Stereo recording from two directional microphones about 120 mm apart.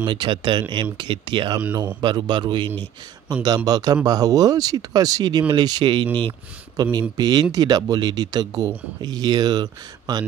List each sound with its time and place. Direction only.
0.0 s speech: 40° right (ahead or behind)